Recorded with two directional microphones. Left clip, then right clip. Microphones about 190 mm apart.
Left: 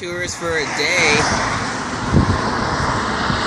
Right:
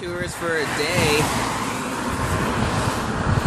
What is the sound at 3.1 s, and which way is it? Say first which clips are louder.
Vehicle: left 5 dB; 30° right (ahead or behind).